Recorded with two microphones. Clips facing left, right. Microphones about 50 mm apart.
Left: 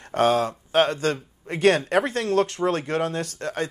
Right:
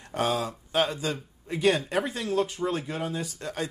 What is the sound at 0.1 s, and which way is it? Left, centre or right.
Speech, left.